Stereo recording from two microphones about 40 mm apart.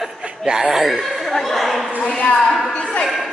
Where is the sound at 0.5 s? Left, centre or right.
Centre.